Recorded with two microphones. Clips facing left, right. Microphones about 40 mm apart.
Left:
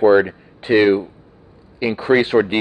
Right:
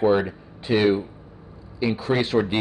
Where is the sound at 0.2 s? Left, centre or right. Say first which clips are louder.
Left 7 dB; left.